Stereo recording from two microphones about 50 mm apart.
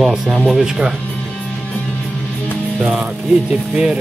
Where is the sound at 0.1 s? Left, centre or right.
Centre.